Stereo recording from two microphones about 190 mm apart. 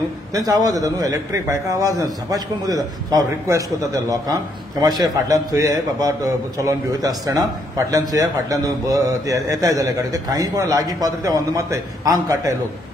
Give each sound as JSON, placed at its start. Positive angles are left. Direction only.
{"t": 0.3, "sound": "a man's voice", "side_deg": -20}